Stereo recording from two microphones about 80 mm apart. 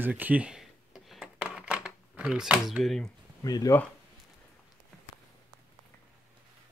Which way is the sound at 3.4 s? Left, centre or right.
Left.